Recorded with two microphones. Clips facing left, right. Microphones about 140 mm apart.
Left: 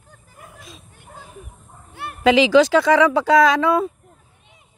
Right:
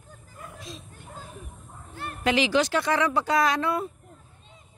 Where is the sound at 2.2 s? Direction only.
90° left.